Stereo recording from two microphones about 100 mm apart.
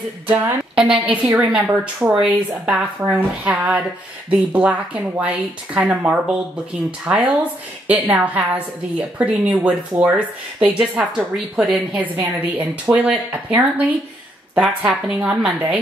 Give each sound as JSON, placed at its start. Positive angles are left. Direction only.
{"t": 0.3, "sound": "a woman's voice", "side_deg": -20}